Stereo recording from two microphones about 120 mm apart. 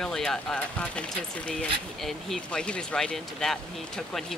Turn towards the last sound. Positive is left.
turn(degrees=5)  # may be behind; listen again after turning